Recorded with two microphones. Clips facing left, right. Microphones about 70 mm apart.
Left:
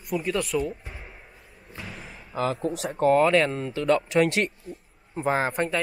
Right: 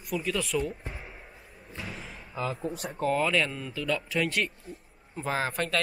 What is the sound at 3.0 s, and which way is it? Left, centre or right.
Speech, left.